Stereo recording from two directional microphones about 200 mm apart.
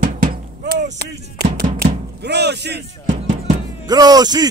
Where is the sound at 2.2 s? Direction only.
55° right (ahead or behind).